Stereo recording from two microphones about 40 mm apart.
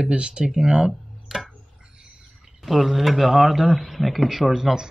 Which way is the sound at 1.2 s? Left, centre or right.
Centre.